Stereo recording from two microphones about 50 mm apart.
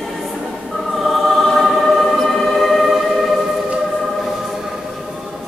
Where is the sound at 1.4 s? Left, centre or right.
Centre.